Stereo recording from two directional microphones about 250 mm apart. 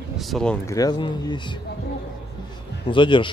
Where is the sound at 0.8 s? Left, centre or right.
Centre.